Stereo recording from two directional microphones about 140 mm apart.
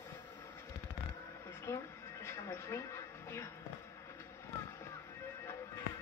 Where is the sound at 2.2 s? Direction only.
20° left (ahead or behind).